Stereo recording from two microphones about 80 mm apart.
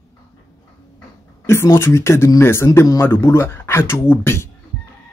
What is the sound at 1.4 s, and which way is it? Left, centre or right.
Speech, left.